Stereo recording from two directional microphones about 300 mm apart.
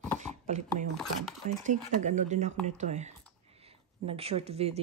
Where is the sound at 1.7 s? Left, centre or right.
Right.